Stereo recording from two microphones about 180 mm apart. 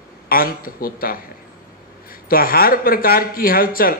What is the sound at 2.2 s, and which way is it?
A man's voice, 55° left (ahead or behind).